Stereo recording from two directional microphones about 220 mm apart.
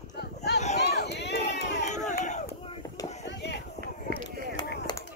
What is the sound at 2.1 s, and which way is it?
Crowd, 35° left (ahead or behind).